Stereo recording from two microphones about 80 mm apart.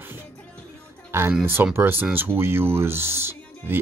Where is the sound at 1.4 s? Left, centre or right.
Right.